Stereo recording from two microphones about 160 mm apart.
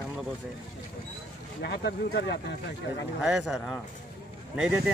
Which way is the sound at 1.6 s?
90° left.